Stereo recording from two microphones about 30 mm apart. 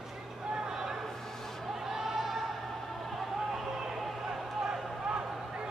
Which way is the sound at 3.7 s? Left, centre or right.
Centre.